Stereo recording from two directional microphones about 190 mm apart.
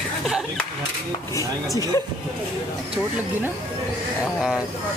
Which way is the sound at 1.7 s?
15° left (ahead or behind).